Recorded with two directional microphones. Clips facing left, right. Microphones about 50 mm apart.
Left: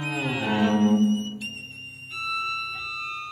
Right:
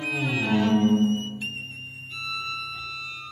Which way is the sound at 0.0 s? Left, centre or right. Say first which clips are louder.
Right 1 dB; centre.